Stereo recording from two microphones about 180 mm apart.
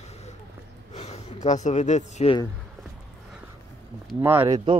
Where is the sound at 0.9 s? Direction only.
35° left (ahead or behind).